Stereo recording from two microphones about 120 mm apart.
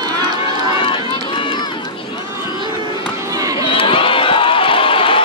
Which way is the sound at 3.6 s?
45° left (ahead or behind).